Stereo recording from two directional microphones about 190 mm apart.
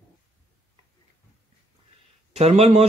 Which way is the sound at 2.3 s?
35° right (ahead or behind).